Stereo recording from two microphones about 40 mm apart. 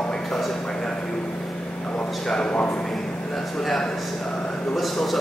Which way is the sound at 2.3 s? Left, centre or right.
Left.